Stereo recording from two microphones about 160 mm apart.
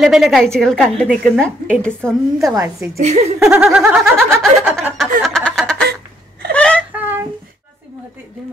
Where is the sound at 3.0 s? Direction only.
45° right (ahead or behind).